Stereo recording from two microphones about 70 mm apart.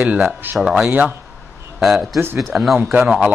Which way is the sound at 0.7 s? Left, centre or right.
Centre.